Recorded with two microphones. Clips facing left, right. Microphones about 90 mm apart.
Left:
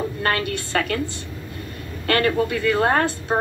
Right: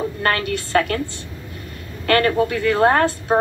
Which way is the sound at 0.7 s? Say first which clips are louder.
Right 4 dB; 30° right (ahead or behind).